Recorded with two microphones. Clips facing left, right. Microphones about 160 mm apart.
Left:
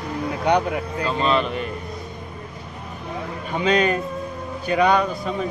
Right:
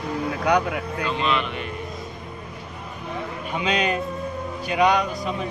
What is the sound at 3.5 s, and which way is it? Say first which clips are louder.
A man's voice: left 4 dB; 45° left (ahead or behind).